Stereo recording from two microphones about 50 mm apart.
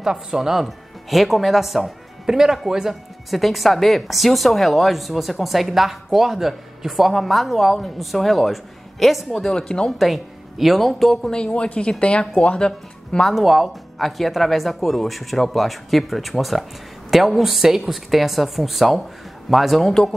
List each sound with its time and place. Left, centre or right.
0.0 s speech: centre
9.5 s speech: centre
9.9 s speech: centre
11.2 s speech: centre
13.3 s speech: centre